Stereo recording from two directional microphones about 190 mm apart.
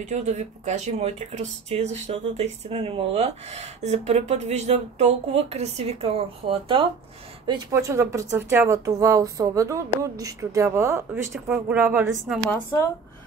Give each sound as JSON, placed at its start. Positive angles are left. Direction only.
{"t": 0.0, "sound": "speech", "side_deg": -35}